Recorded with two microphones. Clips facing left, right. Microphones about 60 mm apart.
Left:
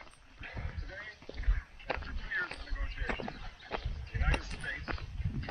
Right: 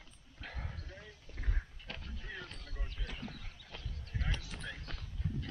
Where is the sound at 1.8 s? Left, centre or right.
Left.